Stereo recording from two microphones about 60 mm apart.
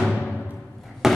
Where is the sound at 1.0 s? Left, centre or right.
Centre.